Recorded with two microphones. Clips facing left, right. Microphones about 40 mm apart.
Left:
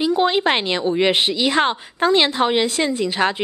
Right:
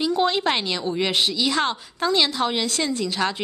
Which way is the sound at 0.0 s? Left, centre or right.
Centre.